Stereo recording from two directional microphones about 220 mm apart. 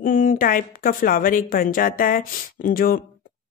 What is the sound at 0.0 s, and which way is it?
Speech, 40° left (ahead or behind).